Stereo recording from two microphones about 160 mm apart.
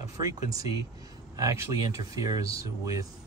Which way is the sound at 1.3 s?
20° right (ahead or behind).